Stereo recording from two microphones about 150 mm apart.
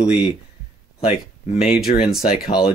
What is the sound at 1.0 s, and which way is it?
Speech, 40° left (ahead or behind).